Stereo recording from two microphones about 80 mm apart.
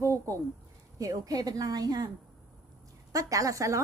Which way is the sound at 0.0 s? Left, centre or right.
Right.